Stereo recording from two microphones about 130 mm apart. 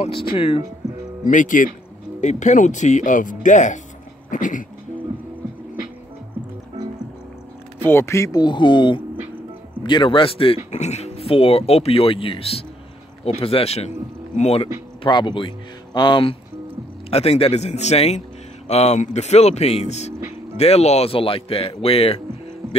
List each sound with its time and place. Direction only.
0.0 s speech: 45° left (ahead or behind)
1.2 s speech: 85° left
2.2 s speech: 65° left (ahead or behind)
4.3 s speech: 80° left
7.8 s speech: 20° left (ahead or behind); by 14.7 s 50° left (ahead or behind)
15.0 s speech: 35° left (ahead or behind)
17.1 s speech: 50° left (ahead or behind)